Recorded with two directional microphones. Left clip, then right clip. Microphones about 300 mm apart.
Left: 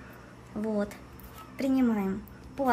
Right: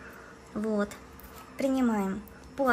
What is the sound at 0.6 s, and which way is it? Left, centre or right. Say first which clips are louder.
A woman's voice: right 1 dB; centre.